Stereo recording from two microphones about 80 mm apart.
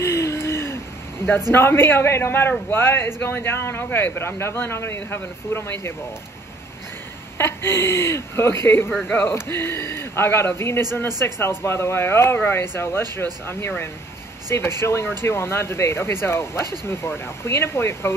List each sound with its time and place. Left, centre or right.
0.0 s a sound: left
1.5 s speech: left
7.3 s speech: left